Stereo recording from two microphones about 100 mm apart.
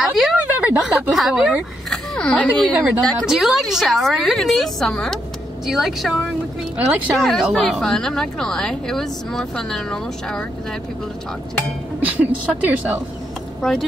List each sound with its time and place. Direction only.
0.0 s a sound: centre (ahead or behind)
0.4 s a sound: 15° right (ahead or behind)
1.1 s a woman's voice: 5° right (ahead or behind)
2.1 s speech: 10° left (ahead or behind)
2.8 s a woman's voice: centre (ahead or behind)
6.8 s a woman's voice: 15° right (ahead or behind)
7.2 s a woman's voice: centre (ahead or behind)
12.0 s a woman's voice: 15° right (ahead or behind)
13.6 s speech: 5° left (ahead or behind)